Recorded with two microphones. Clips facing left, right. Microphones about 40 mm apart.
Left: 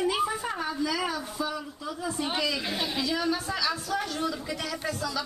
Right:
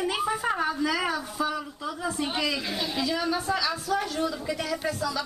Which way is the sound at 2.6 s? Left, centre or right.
Centre.